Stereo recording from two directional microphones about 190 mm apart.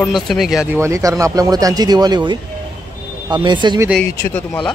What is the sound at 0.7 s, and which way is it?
Speech, 15° right (ahead or behind).